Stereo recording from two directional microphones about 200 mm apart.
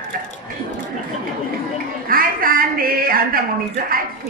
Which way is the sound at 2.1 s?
45° right (ahead or behind).